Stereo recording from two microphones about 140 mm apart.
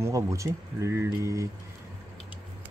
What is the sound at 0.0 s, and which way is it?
Speech, 20° right (ahead or behind).